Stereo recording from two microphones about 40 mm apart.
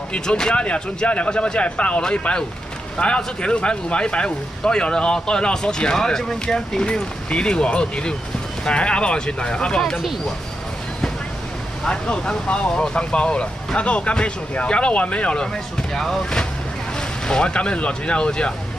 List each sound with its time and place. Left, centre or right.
0.1 s speech: left
11.9 s speech: left
15.4 s speech: centre
17.3 s speech: left